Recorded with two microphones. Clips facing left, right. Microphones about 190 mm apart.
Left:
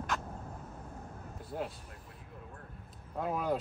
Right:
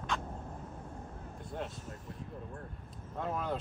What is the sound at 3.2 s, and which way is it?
Speech, 5° left (ahead or behind).